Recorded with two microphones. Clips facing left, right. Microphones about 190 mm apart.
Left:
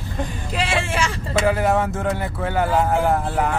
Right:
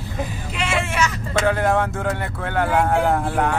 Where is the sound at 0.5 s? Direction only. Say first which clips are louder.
Left 1 dB; 35° left (ahead or behind).